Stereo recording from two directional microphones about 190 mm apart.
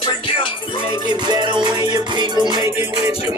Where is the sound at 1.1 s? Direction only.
20° right (ahead or behind).